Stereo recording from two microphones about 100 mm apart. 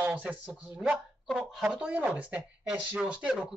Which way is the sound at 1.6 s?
10° right (ahead or behind).